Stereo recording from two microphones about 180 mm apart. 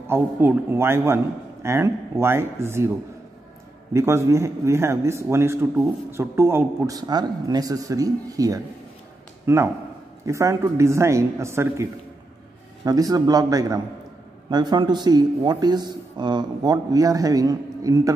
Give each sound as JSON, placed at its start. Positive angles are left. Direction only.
{"t": 0.0, "sound": "a man's voice", "side_deg": -10}
{"t": 3.9, "sound": "a man's voice", "side_deg": -15}